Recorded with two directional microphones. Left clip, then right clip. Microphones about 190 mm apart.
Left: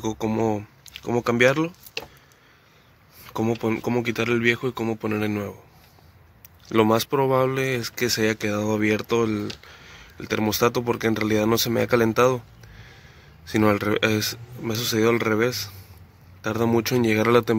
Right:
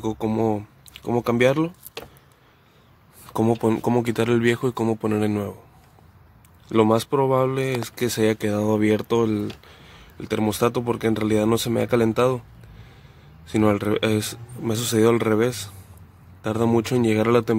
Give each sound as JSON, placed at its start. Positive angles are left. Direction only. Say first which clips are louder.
{"t": 0.0, "sound": "speech", "louder": "right 1 dB", "side_deg": -10}
{"t": 3.3, "sound": "speech", "louder": "right 4 dB", "side_deg": -30}
{"t": 6.7, "sound": "speech", "louder": "right 1 dB", "side_deg": -5}
{"t": 13.5, "sound": "speech", "louder": "even", "side_deg": -5}